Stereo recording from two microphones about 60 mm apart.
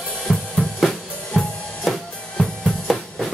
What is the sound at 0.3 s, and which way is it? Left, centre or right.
Drum kit, centre.